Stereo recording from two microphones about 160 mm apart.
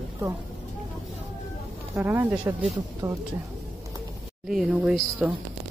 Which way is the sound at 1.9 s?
15° right (ahead or behind).